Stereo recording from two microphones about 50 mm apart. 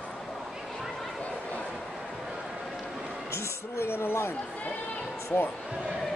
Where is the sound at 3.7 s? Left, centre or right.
Left.